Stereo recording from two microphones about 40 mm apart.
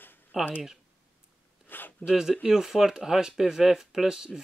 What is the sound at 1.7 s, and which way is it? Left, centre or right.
Speech, left.